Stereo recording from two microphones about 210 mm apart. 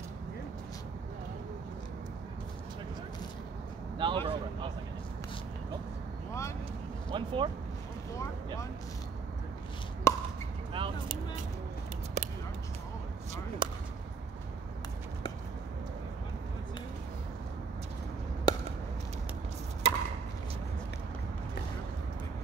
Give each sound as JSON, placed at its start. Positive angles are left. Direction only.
{"t": 4.0, "sound": "speech", "side_deg": -25}
{"t": 7.1, "sound": "speech", "side_deg": -25}
{"t": 10.1, "sound": "chop", "side_deg": 15}
{"t": 10.7, "sound": "a sound", "side_deg": -25}
{"t": 13.6, "sound": "whip", "side_deg": -25}
{"t": 18.5, "sound": "chop", "side_deg": 20}
{"t": 19.8, "sound": "chop", "side_deg": -30}